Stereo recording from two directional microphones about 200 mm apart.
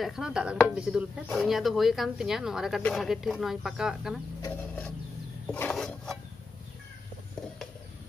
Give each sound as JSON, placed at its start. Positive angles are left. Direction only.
{"t": 0.0, "sound": "speech", "side_deg": -5}
{"t": 4.5, "sound": "a sound", "side_deg": 5}
{"t": 5.5, "sound": "speech", "side_deg": 5}